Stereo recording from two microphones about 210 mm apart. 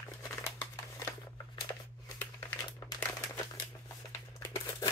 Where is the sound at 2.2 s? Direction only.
15° left (ahead or behind).